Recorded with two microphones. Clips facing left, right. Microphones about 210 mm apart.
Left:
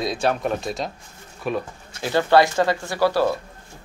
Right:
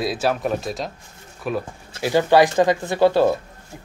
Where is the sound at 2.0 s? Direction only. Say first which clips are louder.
Right 2 dB; 15° right (ahead or behind).